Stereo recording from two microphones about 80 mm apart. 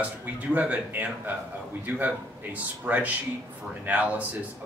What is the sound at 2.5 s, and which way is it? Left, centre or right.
A man's voice, centre.